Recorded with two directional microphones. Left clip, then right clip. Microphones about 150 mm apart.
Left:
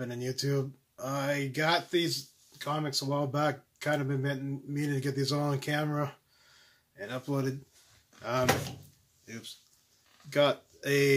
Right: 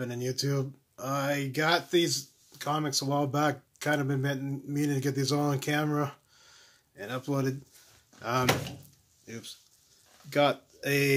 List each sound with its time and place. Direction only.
0.0 s speech: 35° right (ahead or behind)
9.2 s speech: 30° right (ahead or behind)